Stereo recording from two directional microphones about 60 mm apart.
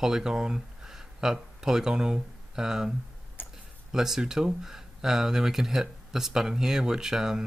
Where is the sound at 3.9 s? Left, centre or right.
Centre.